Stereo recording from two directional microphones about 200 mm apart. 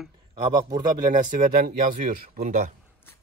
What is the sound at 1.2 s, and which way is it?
A man's voice, 40° right (ahead or behind).